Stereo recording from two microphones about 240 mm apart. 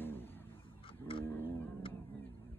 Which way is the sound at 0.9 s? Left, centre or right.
Left.